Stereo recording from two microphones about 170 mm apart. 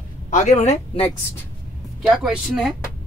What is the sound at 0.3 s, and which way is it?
Speech, 45° left (ahead or behind).